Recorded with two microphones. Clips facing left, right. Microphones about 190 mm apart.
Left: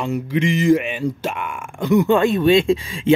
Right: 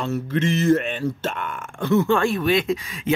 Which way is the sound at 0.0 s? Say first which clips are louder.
Left 2 dB; 15° left (ahead or behind).